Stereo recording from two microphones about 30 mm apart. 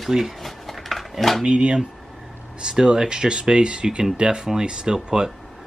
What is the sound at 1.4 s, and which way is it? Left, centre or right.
Speech, right.